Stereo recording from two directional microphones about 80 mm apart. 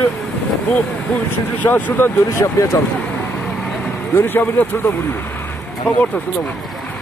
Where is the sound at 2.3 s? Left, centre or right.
Left.